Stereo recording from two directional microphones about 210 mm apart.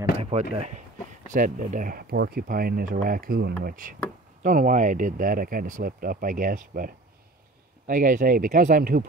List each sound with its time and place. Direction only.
0.2 s speech: 30° right (ahead or behind)